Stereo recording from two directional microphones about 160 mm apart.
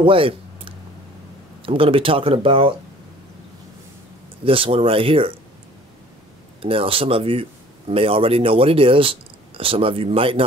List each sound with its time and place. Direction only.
0.0 s a sound: 35° right (ahead or behind)
1.7 s speech: 35° right (ahead or behind)
4.5 s speech: 35° right (ahead or behind)
6.6 s speech: 35° right (ahead or behind)